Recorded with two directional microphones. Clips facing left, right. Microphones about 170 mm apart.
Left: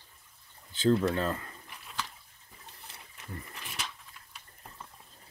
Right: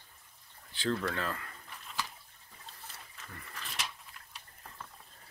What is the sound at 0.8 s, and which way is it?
Speech, 20° left (ahead or behind).